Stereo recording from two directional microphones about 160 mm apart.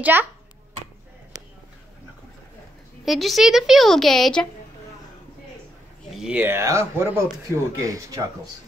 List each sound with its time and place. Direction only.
0.0 s speech: 10° right (ahead or behind)
3.1 s a woman's voice: centre (ahead or behind)
6.1 s speech: 5° right (ahead or behind)